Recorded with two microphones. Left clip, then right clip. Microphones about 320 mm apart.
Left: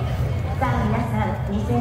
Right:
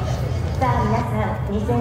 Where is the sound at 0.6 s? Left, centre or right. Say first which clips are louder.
Right 3 dB; centre.